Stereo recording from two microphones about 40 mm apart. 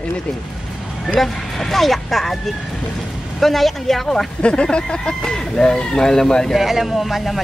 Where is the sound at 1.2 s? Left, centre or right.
Centre.